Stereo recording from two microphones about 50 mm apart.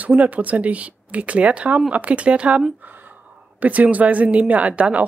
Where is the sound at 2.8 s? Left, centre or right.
Right.